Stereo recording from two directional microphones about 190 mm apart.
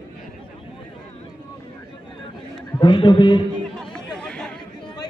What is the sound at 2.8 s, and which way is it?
Speech, 25° left (ahead or behind).